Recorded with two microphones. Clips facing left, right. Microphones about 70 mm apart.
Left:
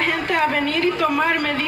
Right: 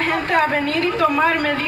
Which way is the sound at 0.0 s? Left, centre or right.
Right.